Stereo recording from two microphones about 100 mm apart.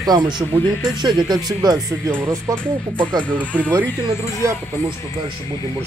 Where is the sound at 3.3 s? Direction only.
15° right (ahead or behind).